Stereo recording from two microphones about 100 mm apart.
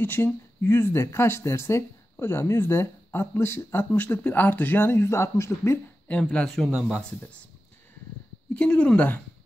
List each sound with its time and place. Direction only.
0.0 s speech: 20° left (ahead or behind)
6.3 s speech: 10° left (ahead or behind)
8.5 s speech: 10° left (ahead or behind)